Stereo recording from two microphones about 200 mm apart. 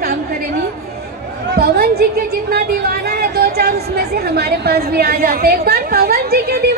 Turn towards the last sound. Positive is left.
turn(degrees=-50)  # may be behind; listen again after turning